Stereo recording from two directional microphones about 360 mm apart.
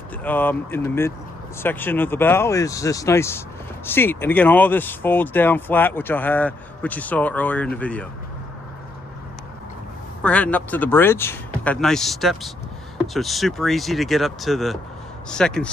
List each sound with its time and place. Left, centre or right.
0.2 s speech: centre
10.2 s speech: centre